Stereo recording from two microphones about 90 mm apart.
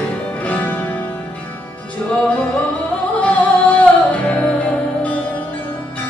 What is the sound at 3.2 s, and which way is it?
Music, 15° left (ahead or behind).